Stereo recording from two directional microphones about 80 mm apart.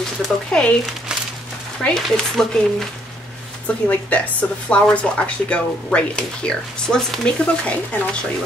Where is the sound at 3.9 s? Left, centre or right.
Centre.